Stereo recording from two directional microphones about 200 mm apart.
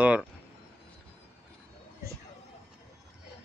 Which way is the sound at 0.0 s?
5° right (ahead or behind).